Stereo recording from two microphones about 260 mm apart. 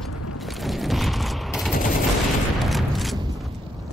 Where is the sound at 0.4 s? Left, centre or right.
Centre.